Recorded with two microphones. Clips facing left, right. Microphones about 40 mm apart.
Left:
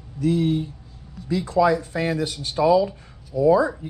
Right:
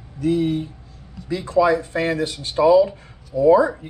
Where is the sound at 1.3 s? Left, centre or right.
Right.